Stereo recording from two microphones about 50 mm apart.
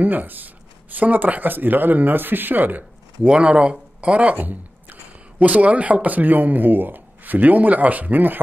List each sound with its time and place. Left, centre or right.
0.0 s speech: right
3.2 s a man's voice: right
4.4 s squish: right
5.4 s a man's voice: right